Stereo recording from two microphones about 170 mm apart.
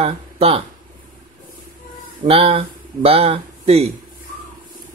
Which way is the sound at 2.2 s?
35° right (ahead or behind).